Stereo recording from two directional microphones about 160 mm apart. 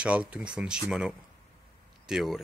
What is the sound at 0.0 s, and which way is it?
Speech, 10° right (ahead or behind).